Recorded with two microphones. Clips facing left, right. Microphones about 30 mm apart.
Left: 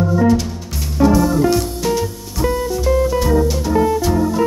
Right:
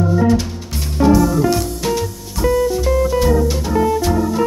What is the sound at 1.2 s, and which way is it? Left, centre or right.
Music, centre.